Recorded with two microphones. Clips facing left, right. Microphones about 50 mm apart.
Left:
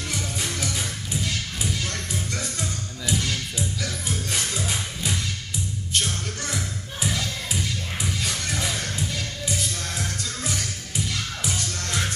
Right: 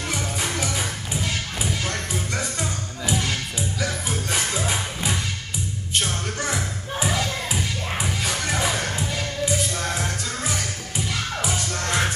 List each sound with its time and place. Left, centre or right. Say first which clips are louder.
0.1 s music: right 3 dB; centre
11.8 s music: right 6 dB; right